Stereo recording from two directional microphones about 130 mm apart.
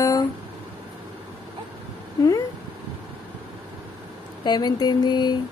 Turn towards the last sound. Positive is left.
turn(degrees=35)  # may be behind; listen again after turning